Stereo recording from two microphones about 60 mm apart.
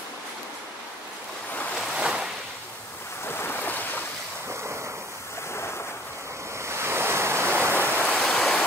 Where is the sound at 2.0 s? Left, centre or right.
Centre.